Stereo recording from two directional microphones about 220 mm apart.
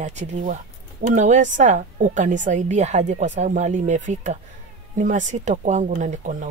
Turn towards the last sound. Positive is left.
turn(degrees=-35)  # may be behind; listen again after turning